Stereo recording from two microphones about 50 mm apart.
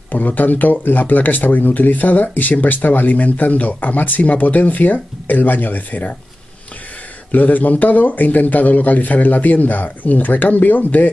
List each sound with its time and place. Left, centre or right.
0.1 s speech: left
7.2 s speech: left